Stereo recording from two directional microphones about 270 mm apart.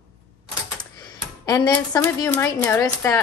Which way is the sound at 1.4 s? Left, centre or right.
Centre.